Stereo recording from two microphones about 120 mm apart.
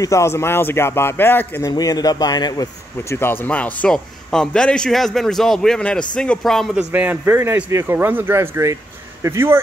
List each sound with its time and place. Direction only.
0.0 s speech: 25° left (ahead or behind)
1.7 s speech: 30° left (ahead or behind)
3.2 s a man's voice: 20° left (ahead or behind); by 9.6 s 20° right (ahead or behind)